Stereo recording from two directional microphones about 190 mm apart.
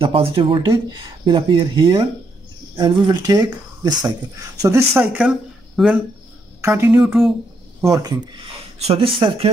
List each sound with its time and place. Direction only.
0.0 s speech: 30° right (ahead or behind)
4.9 s speech: 5° right (ahead or behind)
7.9 s speech: 20° right (ahead or behind)